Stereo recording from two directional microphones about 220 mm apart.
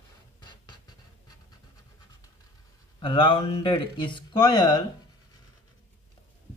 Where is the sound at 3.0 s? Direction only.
25° left (ahead or behind).